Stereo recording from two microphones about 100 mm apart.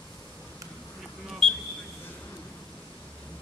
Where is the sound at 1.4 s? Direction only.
5° left (ahead or behind).